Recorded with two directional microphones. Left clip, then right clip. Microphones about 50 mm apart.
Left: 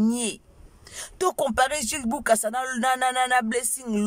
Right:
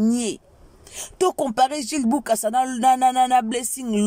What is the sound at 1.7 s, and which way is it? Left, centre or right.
Speech, centre.